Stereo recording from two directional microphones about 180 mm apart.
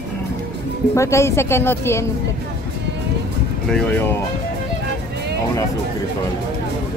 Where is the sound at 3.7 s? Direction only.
10° left (ahead or behind).